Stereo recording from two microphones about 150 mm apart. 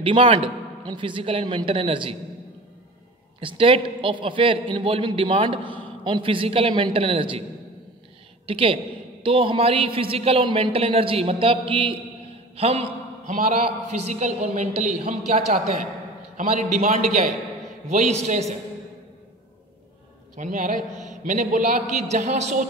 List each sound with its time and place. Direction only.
0.0 s a man's voice: 35° right (ahead or behind)
3.3 s a man's voice: 35° right (ahead or behind)
8.5 s a man's voice: 35° right (ahead or behind)
13.3 s a man's voice: 60° right (ahead or behind)
17.8 s a man's voice: 50° right (ahead or behind)
20.3 s a man's voice: 55° right (ahead or behind)